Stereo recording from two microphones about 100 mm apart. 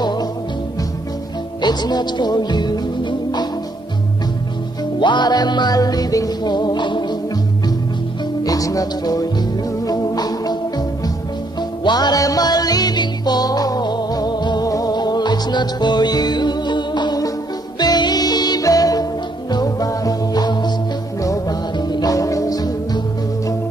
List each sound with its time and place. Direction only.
0.0 s music: 45° left (ahead or behind)
1.6 s music: 45° left (ahead or behind)
5.0 s music: 50° left (ahead or behind)
8.5 s music: 35° left (ahead or behind)
11.8 s music: 45° left (ahead or behind)
21.7 s music: 45° left (ahead or behind)